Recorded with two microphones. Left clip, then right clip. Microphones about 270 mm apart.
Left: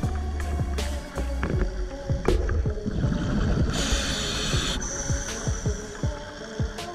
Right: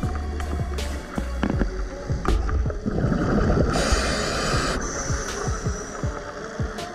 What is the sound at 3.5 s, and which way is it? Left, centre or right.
Boat, right.